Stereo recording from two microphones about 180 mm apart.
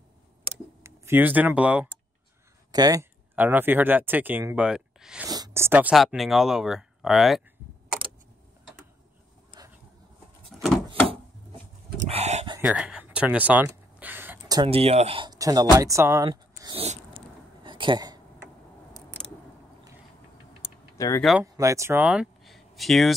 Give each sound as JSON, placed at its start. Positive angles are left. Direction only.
{"t": 0.8, "sound": "speech", "side_deg": -15}
{"t": 2.7, "sound": "speech", "side_deg": -20}
{"t": 5.3, "sound": "speech", "side_deg": -15}
{"t": 9.6, "sound": "vehicle", "side_deg": -20}
{"t": 10.5, "sound": "wood", "side_deg": 0}
{"t": 12.0, "sound": "a sound", "side_deg": -40}
{"t": 12.5, "sound": "speech", "side_deg": -5}
{"t": 13.9, "sound": "a sound", "side_deg": -10}
{"t": 14.6, "sound": "speech", "side_deg": -30}
{"t": 16.7, "sound": "a sound", "side_deg": -35}
{"t": 21.2, "sound": "speech", "side_deg": 0}
{"t": 21.5, "sound": "speech", "side_deg": -15}